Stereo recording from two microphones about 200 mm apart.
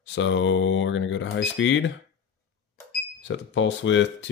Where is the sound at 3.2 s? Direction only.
70° left (ahead or behind).